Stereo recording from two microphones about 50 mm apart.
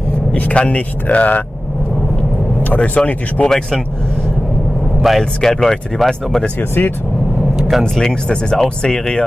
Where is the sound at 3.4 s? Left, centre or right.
Centre.